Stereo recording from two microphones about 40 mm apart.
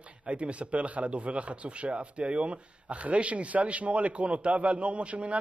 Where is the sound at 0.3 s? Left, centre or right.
Right.